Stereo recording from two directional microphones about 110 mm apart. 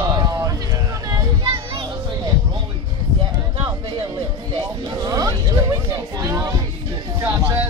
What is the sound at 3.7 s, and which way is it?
Music, 40° right (ahead or behind).